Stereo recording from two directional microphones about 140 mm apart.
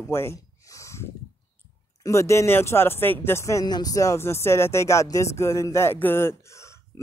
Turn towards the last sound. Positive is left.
turn(degrees=20)  # may be behind; listen again after turning